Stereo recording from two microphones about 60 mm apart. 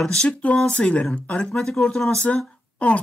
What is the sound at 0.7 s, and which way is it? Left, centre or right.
Speech, centre.